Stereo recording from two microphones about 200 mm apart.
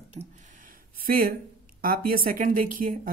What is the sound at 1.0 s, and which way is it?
Speech, 45° right (ahead or behind).